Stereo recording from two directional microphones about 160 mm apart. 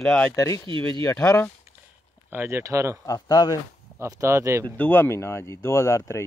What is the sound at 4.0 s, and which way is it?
Speech, 20° right (ahead or behind).